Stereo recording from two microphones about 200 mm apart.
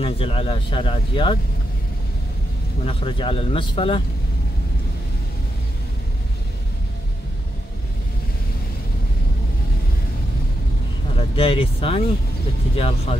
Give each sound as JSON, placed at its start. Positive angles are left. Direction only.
{"t": 0.0, "sound": "speech", "side_deg": 25}
{"t": 2.8, "sound": "speech", "side_deg": 25}
{"t": 11.1, "sound": "speech", "side_deg": 30}